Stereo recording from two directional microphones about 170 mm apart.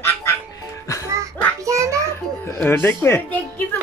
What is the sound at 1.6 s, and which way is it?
Music, 20° right (ahead or behind).